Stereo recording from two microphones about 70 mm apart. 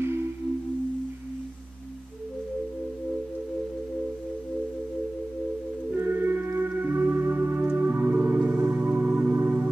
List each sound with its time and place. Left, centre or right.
5.9 s music: right